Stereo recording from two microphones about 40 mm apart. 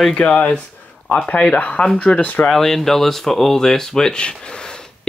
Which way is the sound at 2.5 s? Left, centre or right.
Centre.